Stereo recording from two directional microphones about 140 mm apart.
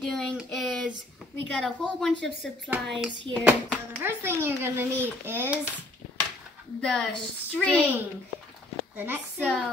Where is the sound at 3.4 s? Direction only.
15° right (ahead or behind).